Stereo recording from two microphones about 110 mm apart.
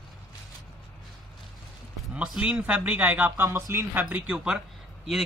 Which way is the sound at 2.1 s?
10° right (ahead or behind).